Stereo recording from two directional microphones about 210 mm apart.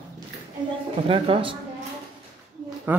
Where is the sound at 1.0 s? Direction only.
25° right (ahead or behind).